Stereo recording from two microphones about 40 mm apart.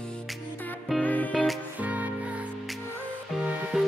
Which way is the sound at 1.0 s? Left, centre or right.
Left.